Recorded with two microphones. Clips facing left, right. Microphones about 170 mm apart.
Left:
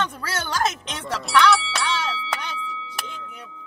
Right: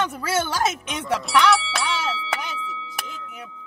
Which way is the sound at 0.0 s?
10° right (ahead or behind).